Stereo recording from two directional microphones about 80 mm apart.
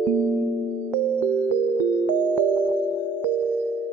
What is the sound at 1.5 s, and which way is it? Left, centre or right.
Music, left.